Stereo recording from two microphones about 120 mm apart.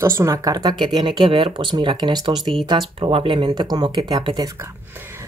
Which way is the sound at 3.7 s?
35° right (ahead or behind).